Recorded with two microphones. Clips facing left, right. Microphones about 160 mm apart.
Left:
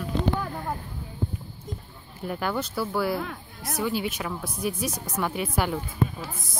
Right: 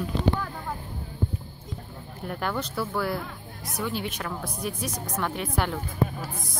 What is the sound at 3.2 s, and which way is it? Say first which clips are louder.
Music: left 4 dB; 65° left (ahead or behind).